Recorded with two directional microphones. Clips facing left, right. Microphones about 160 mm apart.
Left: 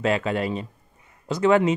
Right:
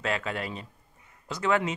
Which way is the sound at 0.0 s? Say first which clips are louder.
Left 8 dB; 20° left (ahead or behind).